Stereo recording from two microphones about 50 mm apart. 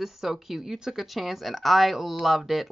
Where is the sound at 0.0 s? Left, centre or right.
Centre.